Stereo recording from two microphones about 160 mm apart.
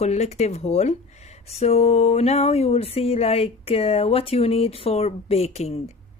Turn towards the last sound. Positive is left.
turn(degrees=40)  # may be behind; listen again after turning